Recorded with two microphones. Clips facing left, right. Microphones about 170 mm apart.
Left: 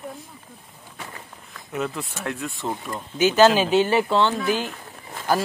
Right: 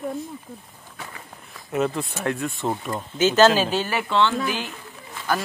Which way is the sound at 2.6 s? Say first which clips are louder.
Right 2 dB; 25° right (ahead or behind).